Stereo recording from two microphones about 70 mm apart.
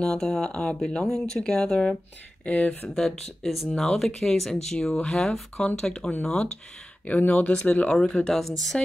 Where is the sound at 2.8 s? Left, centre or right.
Centre.